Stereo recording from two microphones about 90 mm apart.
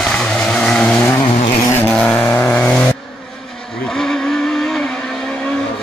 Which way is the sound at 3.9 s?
5° left (ahead or behind).